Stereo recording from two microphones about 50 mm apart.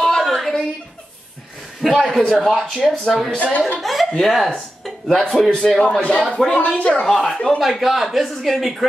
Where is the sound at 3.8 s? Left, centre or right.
Centre.